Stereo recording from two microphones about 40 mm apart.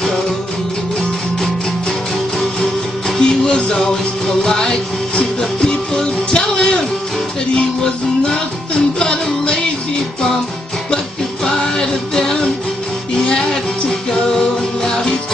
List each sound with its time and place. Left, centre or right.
3.2 s music: left
11.5 s music: centre
13.8 s music: centre